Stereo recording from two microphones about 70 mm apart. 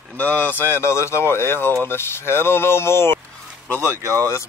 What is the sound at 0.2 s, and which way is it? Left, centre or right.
Speech, left.